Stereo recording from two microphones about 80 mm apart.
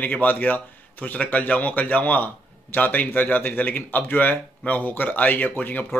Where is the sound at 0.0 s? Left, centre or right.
Left.